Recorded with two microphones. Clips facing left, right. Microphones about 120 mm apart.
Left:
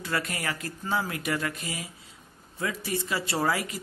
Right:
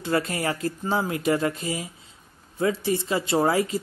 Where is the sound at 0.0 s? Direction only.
25° right (ahead or behind).